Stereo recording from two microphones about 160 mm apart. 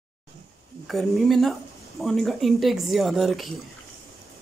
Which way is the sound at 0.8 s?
Centre (ahead or behind).